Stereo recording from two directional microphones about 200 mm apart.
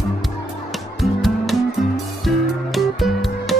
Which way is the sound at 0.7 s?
Centre (ahead or behind).